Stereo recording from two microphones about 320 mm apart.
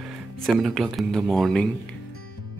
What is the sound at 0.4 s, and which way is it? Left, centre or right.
Speech, centre.